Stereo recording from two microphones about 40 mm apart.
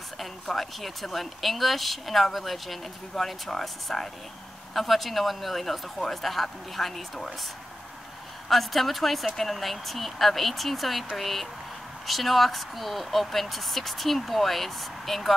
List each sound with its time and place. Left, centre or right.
0.2 s speech: centre
8.5 s speech: centre